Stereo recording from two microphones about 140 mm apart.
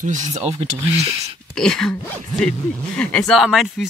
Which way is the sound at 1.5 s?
5° left (ahead or behind).